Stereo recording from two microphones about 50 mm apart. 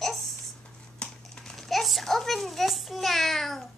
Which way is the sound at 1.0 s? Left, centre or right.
Left.